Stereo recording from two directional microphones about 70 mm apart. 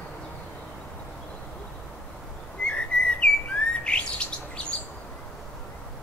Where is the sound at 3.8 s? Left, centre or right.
Centre.